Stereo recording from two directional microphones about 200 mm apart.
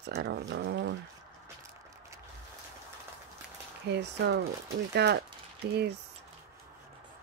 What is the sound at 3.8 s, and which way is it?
Speech, 60° right (ahead or behind).